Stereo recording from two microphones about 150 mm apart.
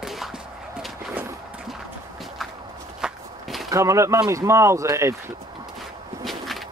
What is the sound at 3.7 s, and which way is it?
Speech, 20° right (ahead or behind).